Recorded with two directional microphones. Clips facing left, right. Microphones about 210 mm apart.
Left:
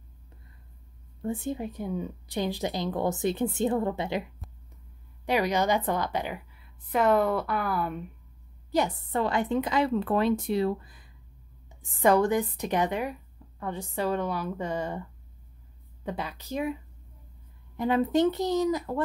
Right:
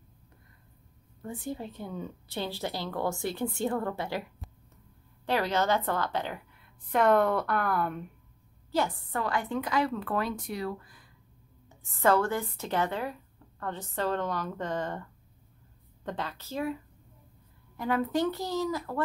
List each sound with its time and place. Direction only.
1.2 s a woman's voice: 25° left (ahead or behind); by 8.0 s centre (ahead or behind)
8.7 s a woman's voice: 20° left (ahead or behind)
17.7 s a woman's voice: 20° left (ahead or behind)